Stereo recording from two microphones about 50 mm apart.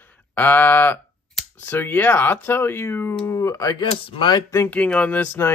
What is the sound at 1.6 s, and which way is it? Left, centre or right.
Speech, left.